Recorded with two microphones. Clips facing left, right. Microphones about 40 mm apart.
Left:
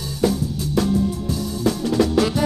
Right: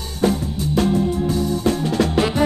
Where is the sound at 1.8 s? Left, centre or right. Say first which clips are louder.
Even; right.